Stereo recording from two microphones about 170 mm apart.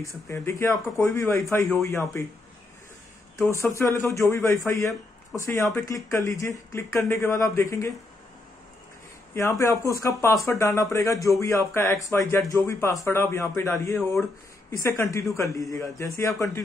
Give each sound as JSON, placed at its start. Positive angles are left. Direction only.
{"t": 0.0, "sound": "speech", "side_deg": 15}
{"t": 3.3, "sound": "speech", "side_deg": 15}
{"t": 9.3, "sound": "speech", "side_deg": 15}